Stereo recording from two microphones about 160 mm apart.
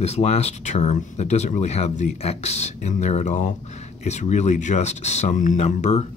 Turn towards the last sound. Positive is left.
turn(degrees=45)  # may be behind; listen again after turning